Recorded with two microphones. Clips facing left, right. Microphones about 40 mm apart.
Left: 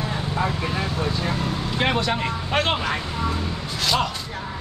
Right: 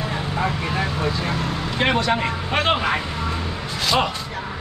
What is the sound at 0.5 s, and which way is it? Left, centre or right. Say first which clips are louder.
Vehicle: right 2 dB; centre.